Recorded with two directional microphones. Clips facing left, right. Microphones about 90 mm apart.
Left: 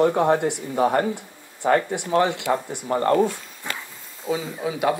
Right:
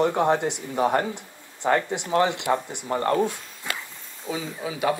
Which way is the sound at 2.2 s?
20° right (ahead or behind).